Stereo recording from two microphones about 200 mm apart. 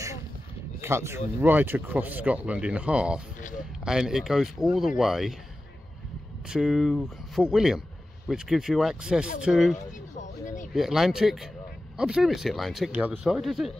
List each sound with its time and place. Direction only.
0.7 s speech: 15° right (ahead or behind)
6.4 s speech: 5° right (ahead or behind)
10.1 s a sound: 40° left (ahead or behind)
10.7 s speech: centre (ahead or behind)